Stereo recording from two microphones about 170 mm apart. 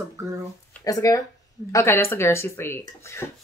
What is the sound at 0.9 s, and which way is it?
Speech, 20° left (ahead or behind).